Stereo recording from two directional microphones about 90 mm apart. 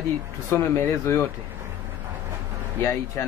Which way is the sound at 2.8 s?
30° left (ahead or behind).